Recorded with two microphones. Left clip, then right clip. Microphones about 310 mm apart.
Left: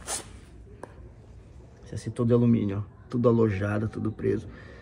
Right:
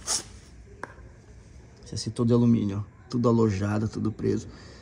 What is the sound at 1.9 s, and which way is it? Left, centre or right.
A man's voice, centre.